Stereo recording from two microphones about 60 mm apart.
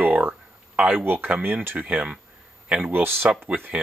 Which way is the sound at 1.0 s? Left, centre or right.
Right.